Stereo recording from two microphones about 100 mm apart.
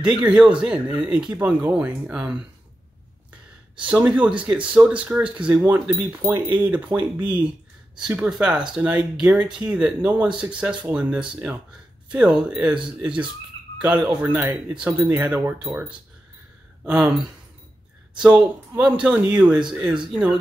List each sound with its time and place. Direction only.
0.2 s speech: 10° right (ahead or behind)
4.1 s speech: 10° right (ahead or behind)
16.8 s speech: 5° right (ahead or behind)